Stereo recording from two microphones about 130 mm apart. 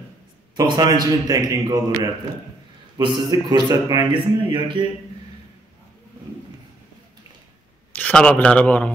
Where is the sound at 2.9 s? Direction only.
30° right (ahead or behind).